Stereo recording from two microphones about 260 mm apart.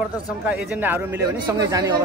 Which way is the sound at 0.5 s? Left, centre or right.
Centre.